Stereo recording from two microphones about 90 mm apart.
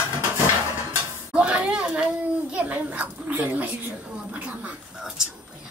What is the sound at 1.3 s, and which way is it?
A child's voice, 10° right (ahead or behind).